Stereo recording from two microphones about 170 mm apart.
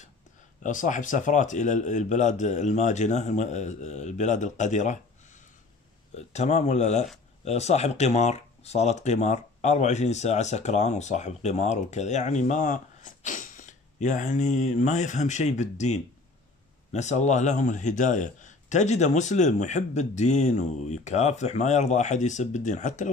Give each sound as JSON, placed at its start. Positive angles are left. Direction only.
{"t": 0.6, "sound": "speech", "side_deg": 50}